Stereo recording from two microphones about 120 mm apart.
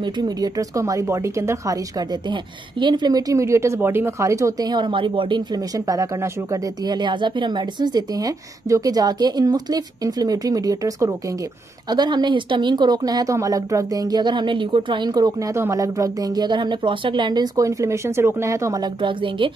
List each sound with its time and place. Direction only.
0.0 s a woman's voice: 35° right (ahead or behind)